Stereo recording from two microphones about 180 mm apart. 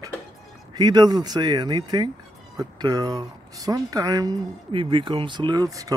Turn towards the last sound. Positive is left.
turn(degrees=-20)  # may be behind; listen again after turning